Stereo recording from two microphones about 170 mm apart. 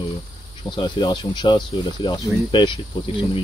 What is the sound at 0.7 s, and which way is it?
Speech, 25° left (ahead or behind).